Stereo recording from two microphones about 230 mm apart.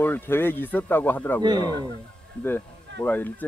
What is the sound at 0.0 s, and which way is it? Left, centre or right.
Speech, centre.